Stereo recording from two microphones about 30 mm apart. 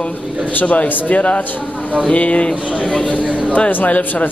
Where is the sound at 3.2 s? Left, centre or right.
Right.